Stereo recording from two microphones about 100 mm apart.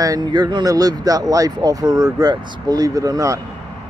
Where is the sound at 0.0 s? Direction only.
40° right (ahead or behind).